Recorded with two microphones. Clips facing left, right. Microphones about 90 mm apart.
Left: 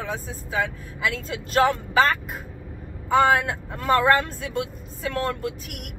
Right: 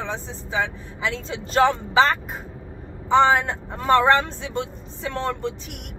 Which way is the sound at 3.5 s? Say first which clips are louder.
Right 1 dB; 25° right (ahead or behind).